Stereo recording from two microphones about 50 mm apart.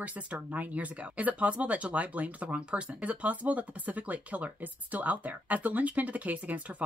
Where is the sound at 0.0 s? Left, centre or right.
Right.